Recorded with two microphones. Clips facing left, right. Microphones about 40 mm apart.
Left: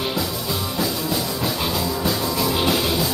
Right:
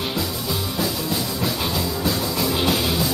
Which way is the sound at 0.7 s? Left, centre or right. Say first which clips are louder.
Left 2 dB; centre.